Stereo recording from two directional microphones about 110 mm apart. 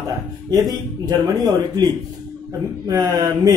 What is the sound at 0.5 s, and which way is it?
Speech, 35° right (ahead or behind).